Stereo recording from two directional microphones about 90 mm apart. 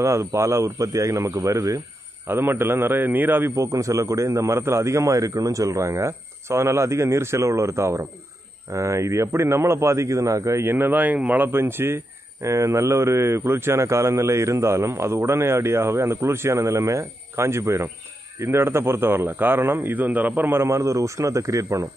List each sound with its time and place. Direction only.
0.0 s a man's voice: 35° right (ahead or behind)
2.2 s a man's voice: 25° right (ahead or behind)
3.5 s a man's voice: 35° right (ahead or behind)